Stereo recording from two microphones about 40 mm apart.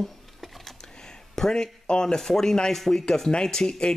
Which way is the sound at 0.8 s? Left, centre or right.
Centre.